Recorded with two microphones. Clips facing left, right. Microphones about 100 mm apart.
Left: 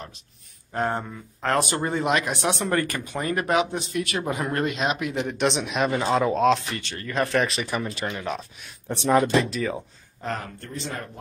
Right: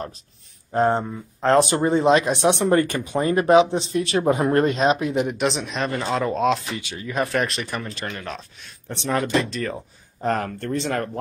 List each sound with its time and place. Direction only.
0.7 s speech: 25° right (ahead or behind)
5.1 s speech: 15° right (ahead or behind)
5.4 s speech: centre (ahead or behind)
9.2 s speech: 5° left (ahead or behind)
10.2 s speech: 55° right (ahead or behind); by 11.1 s 75° right (ahead or behind)